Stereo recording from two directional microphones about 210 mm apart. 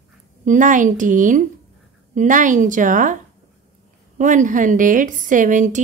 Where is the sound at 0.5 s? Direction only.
40° right (ahead or behind).